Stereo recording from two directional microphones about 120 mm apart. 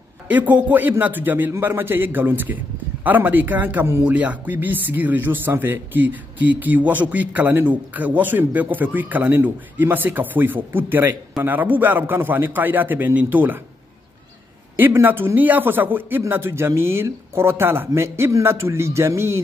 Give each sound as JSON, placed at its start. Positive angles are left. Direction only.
{"t": 0.3, "sound": "speech", "side_deg": -15}
{"t": 14.8, "sound": "a man's voice", "side_deg": -15}